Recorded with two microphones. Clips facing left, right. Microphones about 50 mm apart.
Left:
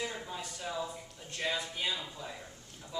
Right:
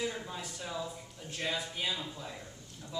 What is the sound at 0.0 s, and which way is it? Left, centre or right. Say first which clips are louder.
Speech: right 1 dB; centre.